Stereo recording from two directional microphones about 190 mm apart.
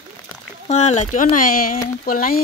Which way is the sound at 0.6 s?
35° left (ahead or behind).